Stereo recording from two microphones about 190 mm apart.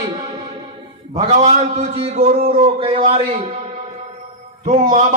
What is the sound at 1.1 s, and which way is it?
A man's voice, 35° right (ahead or behind).